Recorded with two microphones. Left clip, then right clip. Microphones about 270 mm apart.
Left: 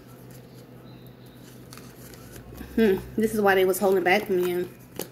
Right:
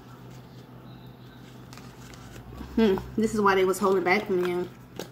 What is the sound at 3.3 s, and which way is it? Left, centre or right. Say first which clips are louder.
Speech: left 2 dB; centre.